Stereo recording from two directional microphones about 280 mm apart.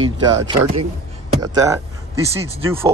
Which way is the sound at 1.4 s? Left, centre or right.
Centre.